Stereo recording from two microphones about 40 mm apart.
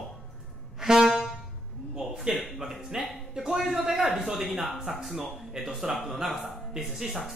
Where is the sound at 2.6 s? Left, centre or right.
Centre.